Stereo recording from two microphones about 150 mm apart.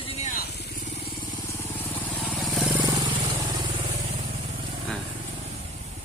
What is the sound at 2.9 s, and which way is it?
Vehicle, 35° right (ahead or behind).